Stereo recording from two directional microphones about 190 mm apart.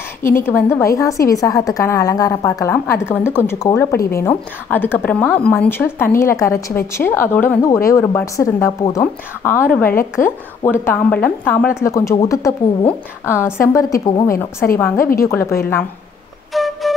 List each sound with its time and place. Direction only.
0.2 s a woman's voice: 10° left (ahead or behind)
10.2 s speech: 45° left (ahead or behind)
10.6 s a woman's voice: 10° left (ahead or behind)
16.5 s flute: centre (ahead or behind)